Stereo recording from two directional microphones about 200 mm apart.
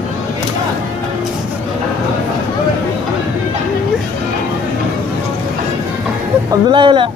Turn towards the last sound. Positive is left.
turn(degrees=-25)  # may be behind; listen again after turning